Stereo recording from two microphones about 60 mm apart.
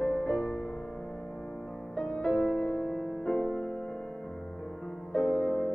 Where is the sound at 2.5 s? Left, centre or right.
Left.